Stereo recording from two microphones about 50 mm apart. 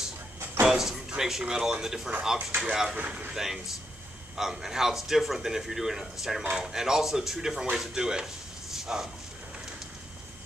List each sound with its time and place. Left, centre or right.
0.7 s speech: centre
3.0 s speech: right
3.3 s speech: centre